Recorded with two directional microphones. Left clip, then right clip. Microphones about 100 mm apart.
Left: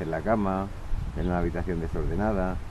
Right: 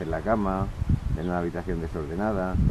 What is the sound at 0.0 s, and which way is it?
Speech, centre (ahead or behind).